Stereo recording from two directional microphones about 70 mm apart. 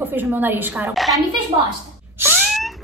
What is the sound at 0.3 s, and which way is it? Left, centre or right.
Speech, right.